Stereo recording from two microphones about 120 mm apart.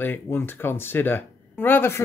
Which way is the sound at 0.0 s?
15° left (ahead or behind).